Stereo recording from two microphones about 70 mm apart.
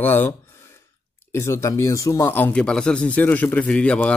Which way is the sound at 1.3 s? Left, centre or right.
Left.